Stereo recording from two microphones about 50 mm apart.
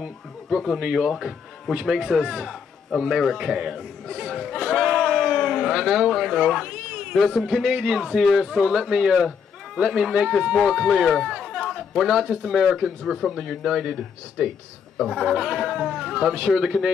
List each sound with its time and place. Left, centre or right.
0.7 s a man's voice: centre
3.3 s a sound: centre
6.9 s a sound: centre
7.2 s speech: centre
7.5 s a man's voice: centre
11.3 s chatter: centre
11.7 s a man's voice: centre